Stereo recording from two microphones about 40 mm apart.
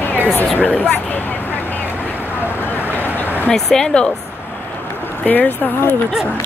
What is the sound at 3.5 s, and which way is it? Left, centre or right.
Speech, centre.